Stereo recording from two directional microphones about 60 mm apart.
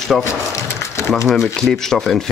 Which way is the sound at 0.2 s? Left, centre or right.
Left.